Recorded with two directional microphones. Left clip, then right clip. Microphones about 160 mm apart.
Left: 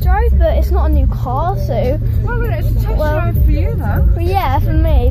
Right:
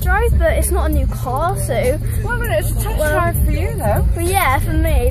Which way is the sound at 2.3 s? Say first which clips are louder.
Right 7 dB; 20° right (ahead or behind).